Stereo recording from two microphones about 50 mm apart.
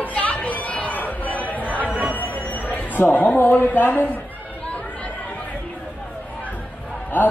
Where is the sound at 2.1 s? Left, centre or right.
Left.